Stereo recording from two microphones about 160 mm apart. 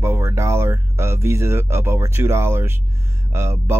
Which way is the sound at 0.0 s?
15° right (ahead or behind).